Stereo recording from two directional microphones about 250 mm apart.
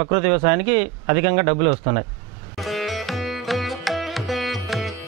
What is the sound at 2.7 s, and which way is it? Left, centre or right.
Music, centre.